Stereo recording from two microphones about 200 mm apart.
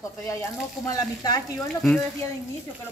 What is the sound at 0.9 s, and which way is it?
Speech, 15° left (ahead or behind).